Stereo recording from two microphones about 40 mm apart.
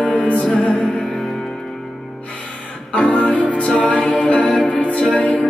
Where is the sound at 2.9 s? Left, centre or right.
Left.